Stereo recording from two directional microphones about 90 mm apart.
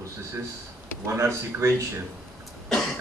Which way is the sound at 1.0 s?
30° right (ahead or behind).